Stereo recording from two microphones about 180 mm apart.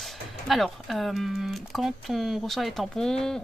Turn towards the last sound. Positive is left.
turn(degrees=5)  # may be behind; listen again after turning